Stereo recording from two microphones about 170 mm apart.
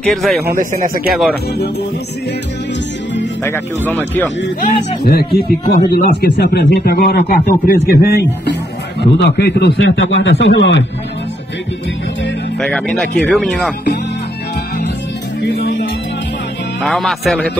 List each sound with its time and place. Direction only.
0.1 s speech: centre (ahead or behind)
0.5 s speech: 55° right (ahead or behind)
3.4 s speech: 10° left (ahead or behind)
5.0 s a man's voice: 65° left (ahead or behind); by 10.9 s 90° left
12.5 s speech: 5° left (ahead or behind)
15.4 s music: 90° left
16.8 s speech: centre (ahead or behind)